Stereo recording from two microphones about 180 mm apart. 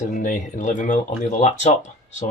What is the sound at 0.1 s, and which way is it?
Speech, 45° left (ahead or behind).